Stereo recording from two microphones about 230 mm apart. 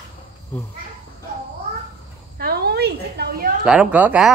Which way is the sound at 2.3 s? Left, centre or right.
Right.